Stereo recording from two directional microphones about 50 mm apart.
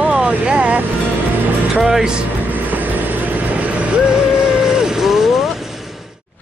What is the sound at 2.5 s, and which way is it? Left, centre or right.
Vehicle, right.